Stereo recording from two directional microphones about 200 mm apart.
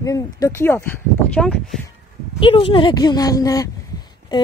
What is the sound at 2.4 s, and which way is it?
A woman's voice, 25° left (ahead or behind).